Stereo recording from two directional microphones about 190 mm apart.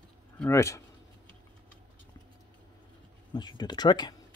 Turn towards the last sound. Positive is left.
turn(degrees=20)  # may be behind; listen again after turning